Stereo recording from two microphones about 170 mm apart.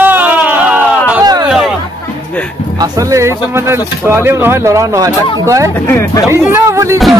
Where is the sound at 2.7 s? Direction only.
20° right (ahead or behind).